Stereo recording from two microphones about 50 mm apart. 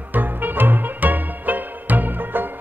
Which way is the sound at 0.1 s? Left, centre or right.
Right.